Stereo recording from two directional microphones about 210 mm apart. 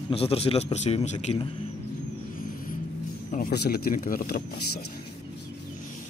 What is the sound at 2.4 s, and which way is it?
Vehicle, 40° left (ahead or behind).